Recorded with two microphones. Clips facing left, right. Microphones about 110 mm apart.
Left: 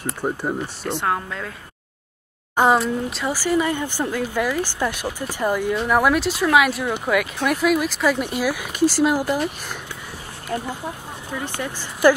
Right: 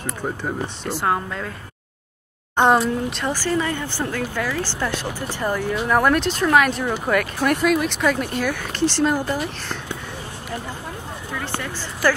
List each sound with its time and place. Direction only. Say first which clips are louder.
0.2 s speech: left 3 dB; 10° left (ahead or behind)
0.8 s speech: right 1 dB; centre (ahead or behind)
2.5 s speech: right 1 dB; centre (ahead or behind)
10.5 s speech: left 5 dB; 40° left (ahead or behind)
12.0 s speech: left 5 dB; 15° left (ahead or behind)